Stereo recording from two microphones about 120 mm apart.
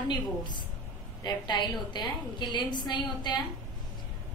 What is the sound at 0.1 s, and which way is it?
A woman's voice, 40° left (ahead or behind).